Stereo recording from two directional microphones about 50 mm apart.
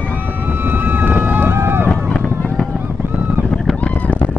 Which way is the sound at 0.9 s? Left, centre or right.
Right.